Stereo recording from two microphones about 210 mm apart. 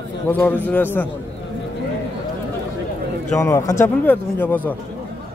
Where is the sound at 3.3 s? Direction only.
15° left (ahead or behind).